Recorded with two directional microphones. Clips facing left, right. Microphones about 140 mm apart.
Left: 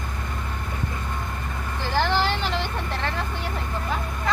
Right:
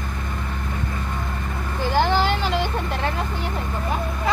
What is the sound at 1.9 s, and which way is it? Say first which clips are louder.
Vehicle: right 3 dB; 15° right (ahead or behind).